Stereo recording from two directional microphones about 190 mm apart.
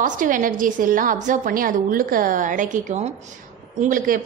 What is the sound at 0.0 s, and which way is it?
A woman's voice, 45° right (ahead or behind).